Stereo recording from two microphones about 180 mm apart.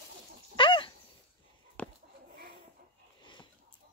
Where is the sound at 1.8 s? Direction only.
5° left (ahead or behind).